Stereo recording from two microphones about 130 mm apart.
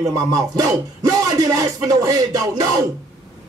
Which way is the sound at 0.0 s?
25° right (ahead or behind).